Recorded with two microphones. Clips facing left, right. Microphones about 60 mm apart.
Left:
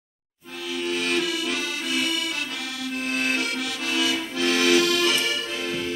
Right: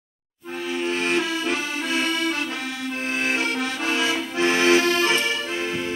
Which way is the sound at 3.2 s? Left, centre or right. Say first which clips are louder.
Right 2 dB; centre.